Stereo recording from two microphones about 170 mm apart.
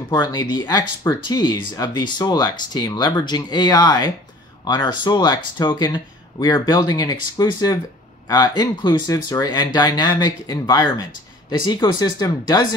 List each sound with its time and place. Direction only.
0.1 s speech: 25° left (ahead or behind)